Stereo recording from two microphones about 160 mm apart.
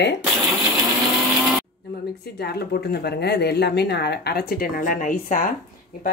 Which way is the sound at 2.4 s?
90° left.